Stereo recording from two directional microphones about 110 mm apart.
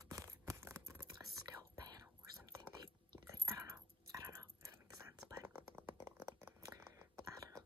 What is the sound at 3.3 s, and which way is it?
Whispering, 30° right (ahead or behind).